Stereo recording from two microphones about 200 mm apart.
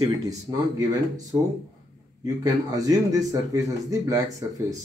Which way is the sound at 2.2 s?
15° right (ahead or behind).